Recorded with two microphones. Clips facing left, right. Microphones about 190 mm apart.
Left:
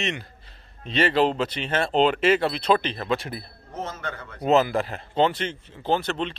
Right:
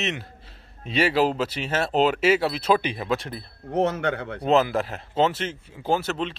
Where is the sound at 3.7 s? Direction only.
65° right (ahead or behind).